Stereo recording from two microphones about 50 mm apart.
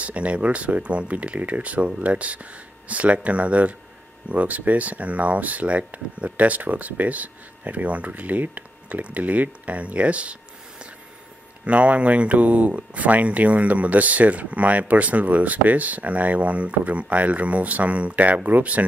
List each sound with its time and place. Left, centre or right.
0.0 s speech: right
11.6 s speech: right